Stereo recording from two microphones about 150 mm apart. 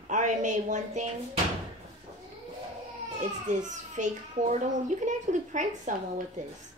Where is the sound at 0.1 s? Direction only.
55° right (ahead or behind).